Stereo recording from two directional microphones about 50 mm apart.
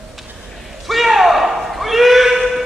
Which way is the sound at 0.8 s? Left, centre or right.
Centre.